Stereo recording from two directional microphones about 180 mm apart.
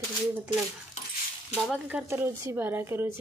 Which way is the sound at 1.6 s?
5° right (ahead or behind).